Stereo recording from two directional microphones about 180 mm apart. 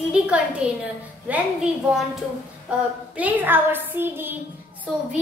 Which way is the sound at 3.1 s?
10° right (ahead or behind).